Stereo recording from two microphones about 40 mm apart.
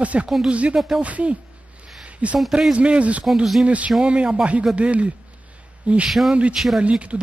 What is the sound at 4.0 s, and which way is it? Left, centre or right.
Speech, right.